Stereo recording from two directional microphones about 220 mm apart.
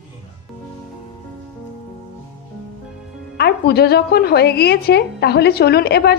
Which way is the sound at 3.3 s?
45° left (ahead or behind).